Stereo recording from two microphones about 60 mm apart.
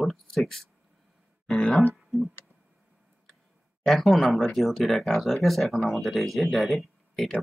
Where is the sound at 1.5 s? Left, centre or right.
Centre.